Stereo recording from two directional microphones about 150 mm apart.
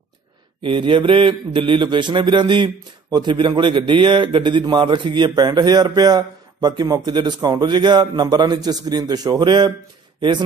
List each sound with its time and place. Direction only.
0.6 s a man's voice: 35° right (ahead or behind)